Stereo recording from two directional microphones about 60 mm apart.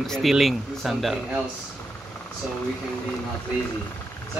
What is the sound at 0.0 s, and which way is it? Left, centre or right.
Speech, centre.